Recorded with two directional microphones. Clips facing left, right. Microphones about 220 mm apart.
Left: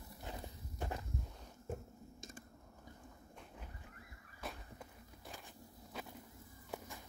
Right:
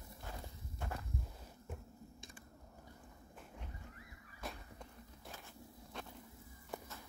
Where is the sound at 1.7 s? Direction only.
40° left (ahead or behind).